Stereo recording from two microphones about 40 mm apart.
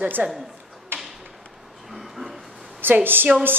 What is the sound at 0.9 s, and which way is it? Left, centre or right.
Tap, right.